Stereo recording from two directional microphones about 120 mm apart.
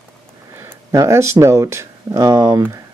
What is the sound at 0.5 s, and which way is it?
Speech, 25° right (ahead or behind).